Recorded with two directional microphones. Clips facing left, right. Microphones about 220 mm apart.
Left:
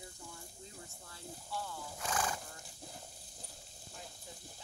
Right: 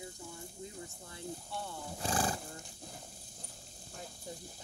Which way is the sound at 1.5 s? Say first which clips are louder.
Right 1 dB; 25° right (ahead or behind).